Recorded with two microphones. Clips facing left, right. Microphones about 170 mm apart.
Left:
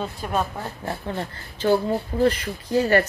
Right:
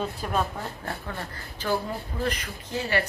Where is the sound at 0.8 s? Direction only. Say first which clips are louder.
Left 6 dB; 25° left (ahead or behind).